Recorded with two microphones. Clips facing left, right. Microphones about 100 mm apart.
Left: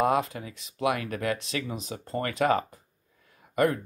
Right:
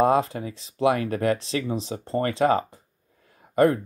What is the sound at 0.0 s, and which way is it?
Speech, 30° right (ahead or behind).